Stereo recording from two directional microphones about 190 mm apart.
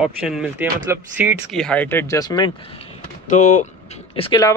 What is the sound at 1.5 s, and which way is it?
Speech, 5° left (ahead or behind).